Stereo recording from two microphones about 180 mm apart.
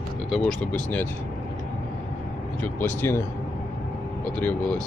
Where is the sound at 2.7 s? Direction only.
10° left (ahead or behind).